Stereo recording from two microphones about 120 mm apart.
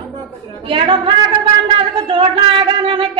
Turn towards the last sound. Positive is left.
turn(degrees=-45)  # may be behind; listen again after turning